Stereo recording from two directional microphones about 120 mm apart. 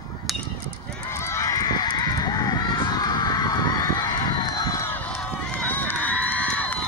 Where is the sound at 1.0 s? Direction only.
20° left (ahead or behind).